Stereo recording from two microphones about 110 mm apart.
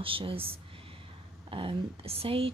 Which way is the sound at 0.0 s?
55° right (ahead or behind).